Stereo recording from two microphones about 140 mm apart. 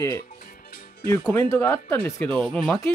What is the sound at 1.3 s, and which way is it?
Speech, 15° left (ahead or behind).